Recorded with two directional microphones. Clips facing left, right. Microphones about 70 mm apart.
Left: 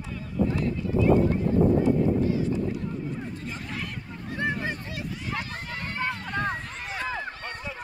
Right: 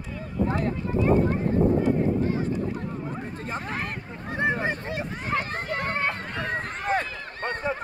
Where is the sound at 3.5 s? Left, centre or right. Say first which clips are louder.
Right 4 dB; right.